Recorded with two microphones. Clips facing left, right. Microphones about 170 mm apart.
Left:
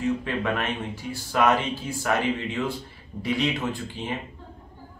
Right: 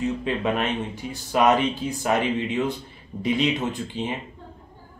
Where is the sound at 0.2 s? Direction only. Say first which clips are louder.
Right 3 dB; 20° right (ahead or behind).